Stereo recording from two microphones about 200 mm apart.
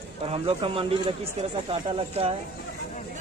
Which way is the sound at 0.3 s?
25° right (ahead or behind).